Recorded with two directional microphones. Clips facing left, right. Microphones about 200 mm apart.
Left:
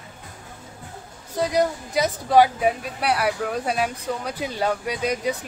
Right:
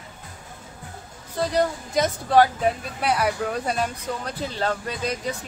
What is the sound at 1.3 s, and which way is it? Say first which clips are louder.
Speech: left 1 dB; 10° left (ahead or behind).